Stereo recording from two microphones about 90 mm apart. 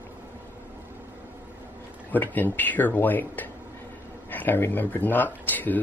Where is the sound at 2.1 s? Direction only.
20° left (ahead or behind).